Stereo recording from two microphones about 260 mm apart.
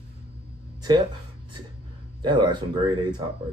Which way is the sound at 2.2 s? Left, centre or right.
Centre.